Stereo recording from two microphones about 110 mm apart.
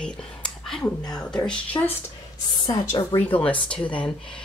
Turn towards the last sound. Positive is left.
turn(degrees=10)  # may be behind; listen again after turning